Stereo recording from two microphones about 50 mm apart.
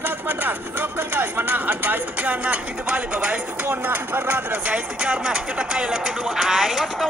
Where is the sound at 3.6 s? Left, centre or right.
Right.